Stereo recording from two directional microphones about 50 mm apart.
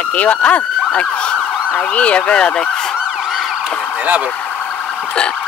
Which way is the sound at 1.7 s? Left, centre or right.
Left.